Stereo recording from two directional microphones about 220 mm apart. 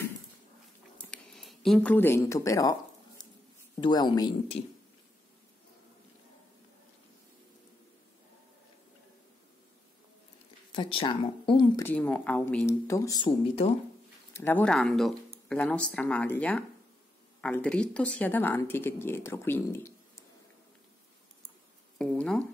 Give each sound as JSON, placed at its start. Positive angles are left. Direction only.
{"t": 1.1, "sound": "speech", "side_deg": 0}
{"t": 3.2, "sound": "a sound", "side_deg": 20}
{"t": 3.8, "sound": "speech", "side_deg": 20}
{"t": 10.7, "sound": "speech", "side_deg": 25}
{"t": 11.8, "sound": "speech", "side_deg": 5}
{"t": 14.3, "sound": "speech", "side_deg": 10}
{"t": 21.9, "sound": "speech", "side_deg": 5}